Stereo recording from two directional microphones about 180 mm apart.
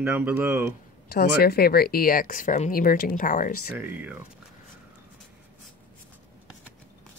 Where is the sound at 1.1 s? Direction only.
60° left (ahead or behind).